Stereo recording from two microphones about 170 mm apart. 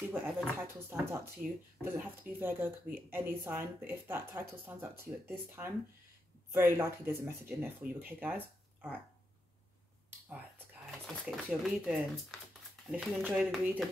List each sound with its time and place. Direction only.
0.1 s speech: 15° right (ahead or behind)
10.2 s a sound: 10° right (ahead or behind)
10.9 s speech: centre (ahead or behind)